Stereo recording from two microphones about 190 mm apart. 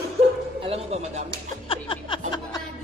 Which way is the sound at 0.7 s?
35° right (ahead or behind).